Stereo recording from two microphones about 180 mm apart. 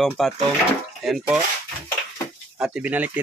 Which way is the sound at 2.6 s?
5° right (ahead or behind).